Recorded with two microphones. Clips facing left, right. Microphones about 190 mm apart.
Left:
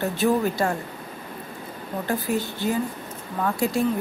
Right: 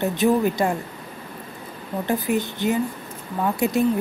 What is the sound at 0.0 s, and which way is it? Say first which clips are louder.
Speech: right 2 dB; 20° right (ahead or behind).